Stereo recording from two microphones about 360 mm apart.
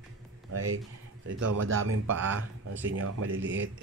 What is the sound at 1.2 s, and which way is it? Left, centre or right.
Speech, right.